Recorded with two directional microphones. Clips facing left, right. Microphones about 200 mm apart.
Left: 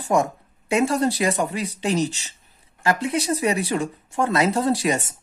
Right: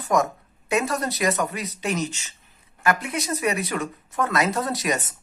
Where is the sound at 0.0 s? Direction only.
30° left (ahead or behind).